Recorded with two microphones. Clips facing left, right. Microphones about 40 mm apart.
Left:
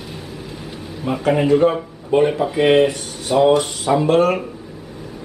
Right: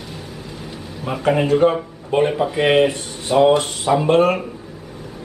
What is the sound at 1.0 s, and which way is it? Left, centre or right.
Speech, centre.